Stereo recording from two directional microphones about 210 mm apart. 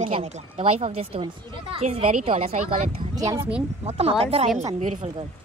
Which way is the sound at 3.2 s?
15° right (ahead or behind).